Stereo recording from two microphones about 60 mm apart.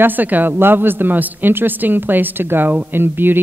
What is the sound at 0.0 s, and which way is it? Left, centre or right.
Speech, right.